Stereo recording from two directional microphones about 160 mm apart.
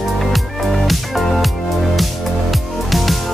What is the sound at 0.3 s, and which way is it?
Music, centre (ahead or behind).